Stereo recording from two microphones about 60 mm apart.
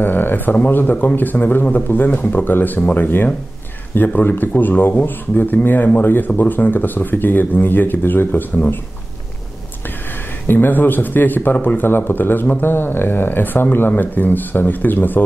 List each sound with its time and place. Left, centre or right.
0.0 s a sound: left
0.7 s speech: left
10.4 s speech: left